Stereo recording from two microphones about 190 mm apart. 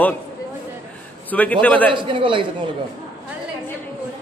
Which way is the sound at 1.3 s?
10° left (ahead or behind).